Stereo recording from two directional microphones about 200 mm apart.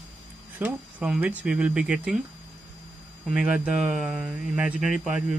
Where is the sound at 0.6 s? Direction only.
5° right (ahead or behind).